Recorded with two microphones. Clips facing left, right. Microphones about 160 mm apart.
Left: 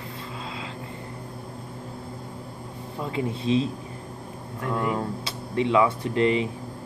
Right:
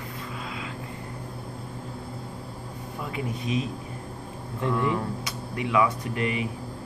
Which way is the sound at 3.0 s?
30° left (ahead or behind).